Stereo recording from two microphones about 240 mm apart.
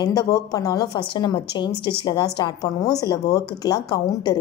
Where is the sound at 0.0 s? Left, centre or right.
Centre.